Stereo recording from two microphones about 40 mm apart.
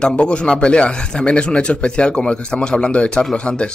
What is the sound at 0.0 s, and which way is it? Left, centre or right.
Speech, left.